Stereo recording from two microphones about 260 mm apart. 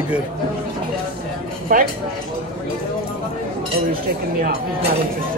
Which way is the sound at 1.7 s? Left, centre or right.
Right.